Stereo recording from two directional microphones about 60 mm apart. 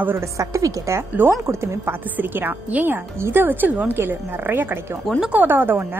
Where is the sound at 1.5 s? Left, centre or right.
Right.